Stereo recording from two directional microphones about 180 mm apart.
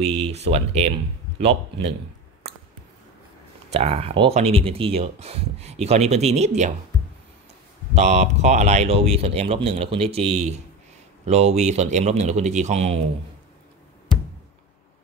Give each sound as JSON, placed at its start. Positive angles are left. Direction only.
{"t": 0.0, "sound": "speech", "side_deg": -35}
{"t": 3.7, "sound": "speech", "side_deg": -35}
{"t": 7.9, "sound": "speech", "side_deg": -40}